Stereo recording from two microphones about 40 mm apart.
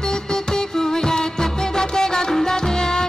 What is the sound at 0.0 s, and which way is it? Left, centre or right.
Music, centre.